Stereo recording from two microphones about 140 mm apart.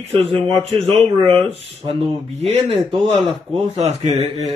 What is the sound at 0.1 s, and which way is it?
Speech, 40° right (ahead or behind).